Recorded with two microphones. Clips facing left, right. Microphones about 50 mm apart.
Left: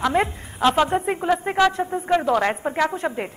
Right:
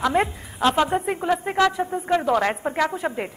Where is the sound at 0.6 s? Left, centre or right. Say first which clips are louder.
Left 1 dB; left.